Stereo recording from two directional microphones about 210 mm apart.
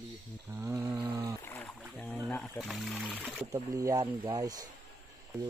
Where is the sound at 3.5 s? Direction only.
15° right (ahead or behind).